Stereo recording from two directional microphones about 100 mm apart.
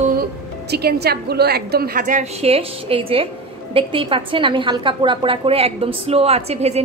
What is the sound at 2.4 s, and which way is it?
A woman's voice, 75° right (ahead or behind).